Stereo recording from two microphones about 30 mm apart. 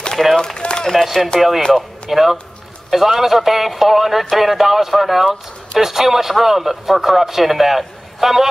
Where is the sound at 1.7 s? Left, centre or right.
Centre.